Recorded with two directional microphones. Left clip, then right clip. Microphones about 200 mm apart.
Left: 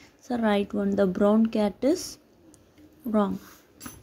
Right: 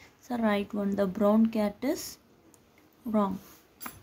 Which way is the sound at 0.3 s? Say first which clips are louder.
Left 4 dB; 15° left (ahead or behind).